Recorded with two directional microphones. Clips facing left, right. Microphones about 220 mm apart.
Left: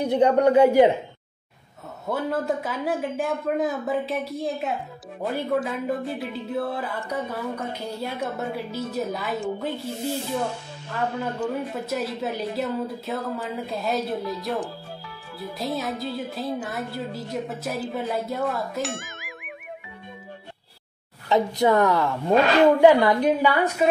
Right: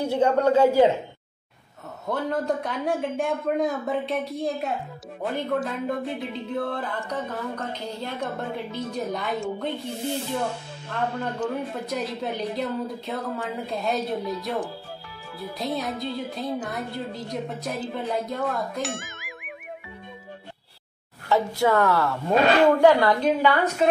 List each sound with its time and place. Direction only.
0.0 s a woman's voice: 20° left (ahead or behind)
2.0 s a woman's voice: 5° left (ahead or behind)
21.3 s a woman's voice: 20° left (ahead or behind)